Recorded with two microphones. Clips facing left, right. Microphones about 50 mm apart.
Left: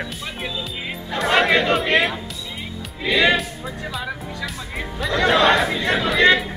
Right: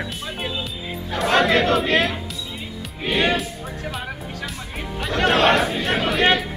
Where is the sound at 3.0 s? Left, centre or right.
Left.